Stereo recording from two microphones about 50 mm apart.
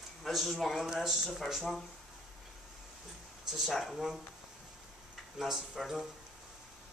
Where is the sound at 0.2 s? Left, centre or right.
Centre.